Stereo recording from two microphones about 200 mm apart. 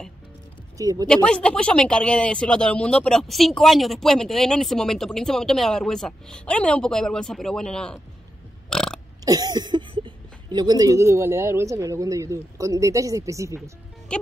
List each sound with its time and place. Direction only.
0.7 s speech: 15° right (ahead or behind)
1.0 s speech: 5° left (ahead or behind)
8.6 s burping: 5° left (ahead or behind)
9.2 s speech: 20° right (ahead or behind)
13.6 s music: 5° left (ahead or behind)